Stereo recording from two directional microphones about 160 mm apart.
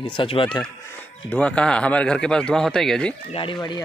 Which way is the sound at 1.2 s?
5° left (ahead or behind).